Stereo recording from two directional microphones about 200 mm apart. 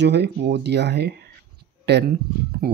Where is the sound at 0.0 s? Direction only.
55° right (ahead or behind).